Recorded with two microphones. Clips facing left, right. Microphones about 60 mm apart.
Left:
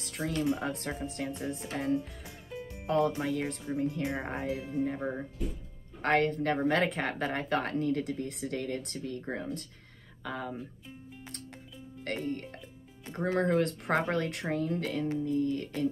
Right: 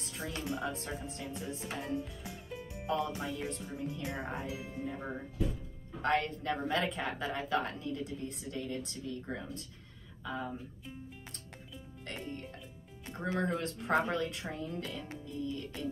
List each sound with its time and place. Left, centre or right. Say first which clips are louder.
0.2 s speech: left 7 dB; left
0.6 s speech: left 3 dB; left
2.9 s speech: left 6 dB; left
6.0 s speech: left 5 dB; left
10.2 s speech: left 2 dB; left
12.0 s speech: left 8 dB; left